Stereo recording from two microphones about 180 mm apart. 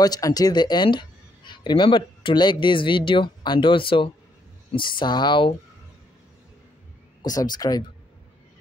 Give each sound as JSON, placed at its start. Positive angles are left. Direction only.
{"t": 0.0, "sound": "speech", "side_deg": 20}
{"t": 7.2, "sound": "speech", "side_deg": 20}